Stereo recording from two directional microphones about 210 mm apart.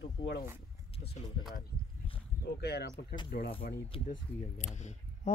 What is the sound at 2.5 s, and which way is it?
Speech, 50° left (ahead or behind).